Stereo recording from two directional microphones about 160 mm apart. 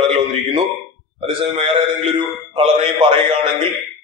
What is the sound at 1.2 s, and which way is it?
A man's voice, 35° right (ahead or behind).